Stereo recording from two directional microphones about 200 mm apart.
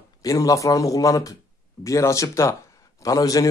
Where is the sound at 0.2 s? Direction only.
15° left (ahead or behind).